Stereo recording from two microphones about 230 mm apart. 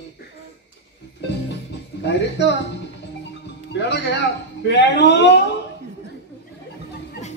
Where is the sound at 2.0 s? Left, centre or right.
Left.